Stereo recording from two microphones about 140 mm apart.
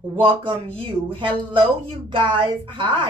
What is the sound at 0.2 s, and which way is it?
A woman's voice, 35° right (ahead or behind).